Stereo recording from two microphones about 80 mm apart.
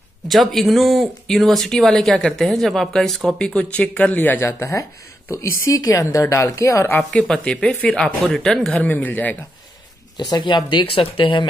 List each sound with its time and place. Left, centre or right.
0.3 s speech: centre
4.2 s speech: left
4.6 s speech: left
7.0 s speech: centre
8.0 s speech: centre
8.8 s speech: left
10.3 s speech: left